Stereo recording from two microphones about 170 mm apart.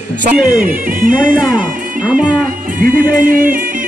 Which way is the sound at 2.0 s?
5° right (ahead or behind).